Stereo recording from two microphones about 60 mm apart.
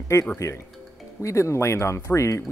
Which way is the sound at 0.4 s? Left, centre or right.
Left.